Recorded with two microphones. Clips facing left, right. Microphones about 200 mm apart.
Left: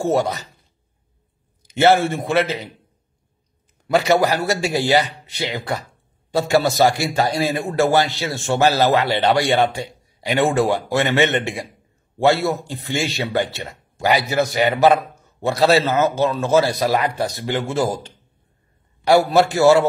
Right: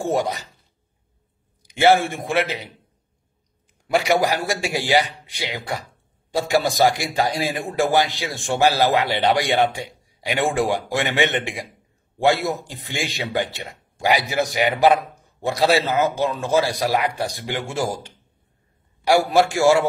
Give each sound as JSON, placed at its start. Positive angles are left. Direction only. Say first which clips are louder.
{"t": 0.0, "sound": "a man's voice", "louder": "left 3 dB", "side_deg": -15}
{"t": 1.6, "sound": "a man's voice", "louder": "left 1 dB", "side_deg": -15}
{"t": 3.9, "sound": "a man's voice", "louder": "left 3 dB", "side_deg": -15}
{"t": 19.0, "sound": "a man's voice", "louder": "left 2 dB", "side_deg": -10}